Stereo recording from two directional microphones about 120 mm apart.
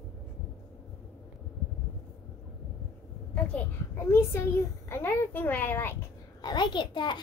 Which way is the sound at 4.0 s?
20° left (ahead or behind).